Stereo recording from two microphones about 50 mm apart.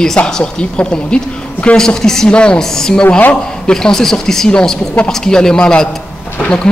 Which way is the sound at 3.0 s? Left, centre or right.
Left.